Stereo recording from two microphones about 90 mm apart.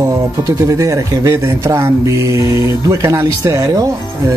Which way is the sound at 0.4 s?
35° right (ahead or behind).